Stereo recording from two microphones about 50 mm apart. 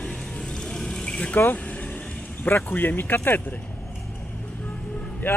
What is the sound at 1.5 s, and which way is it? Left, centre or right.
Vehicle, left.